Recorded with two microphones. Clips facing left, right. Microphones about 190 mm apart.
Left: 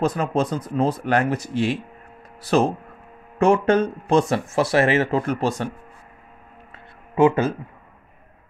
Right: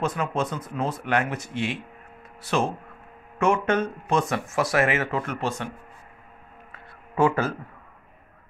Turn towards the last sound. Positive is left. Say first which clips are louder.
# left 5 dB
turn(degrees=20)  # may be behind; listen again after turning